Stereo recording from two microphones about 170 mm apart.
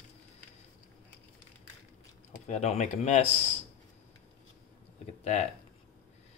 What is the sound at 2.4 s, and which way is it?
Speech, 40° left (ahead or behind).